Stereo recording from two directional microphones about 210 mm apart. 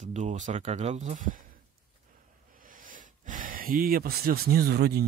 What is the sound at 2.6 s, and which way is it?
Speech, 40° right (ahead or behind).